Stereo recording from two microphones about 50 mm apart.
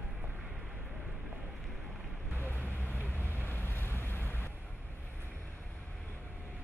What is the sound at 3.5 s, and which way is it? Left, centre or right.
Waves, left.